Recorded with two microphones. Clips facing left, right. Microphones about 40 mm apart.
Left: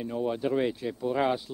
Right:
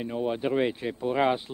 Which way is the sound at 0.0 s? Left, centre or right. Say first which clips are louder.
Right 1 dB; right.